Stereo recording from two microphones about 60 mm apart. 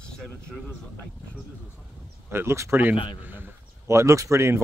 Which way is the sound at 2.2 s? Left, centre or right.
Right.